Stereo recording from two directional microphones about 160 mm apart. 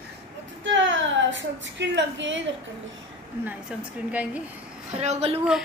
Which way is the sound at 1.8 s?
90° right.